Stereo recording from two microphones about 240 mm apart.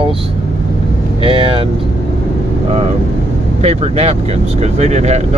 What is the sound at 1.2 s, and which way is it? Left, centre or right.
Speech, right.